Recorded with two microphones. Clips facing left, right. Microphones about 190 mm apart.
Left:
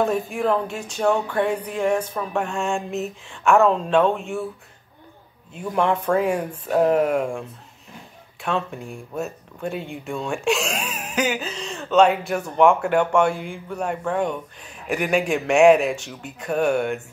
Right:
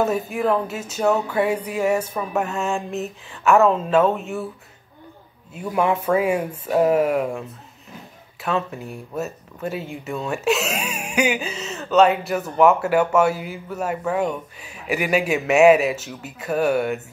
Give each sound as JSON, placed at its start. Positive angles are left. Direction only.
{"t": 0.0, "sound": "speech", "side_deg": -5}
{"t": 5.5, "sound": "speech", "side_deg": -5}